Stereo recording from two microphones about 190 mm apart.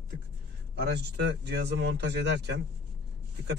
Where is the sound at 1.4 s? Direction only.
60° right (ahead or behind).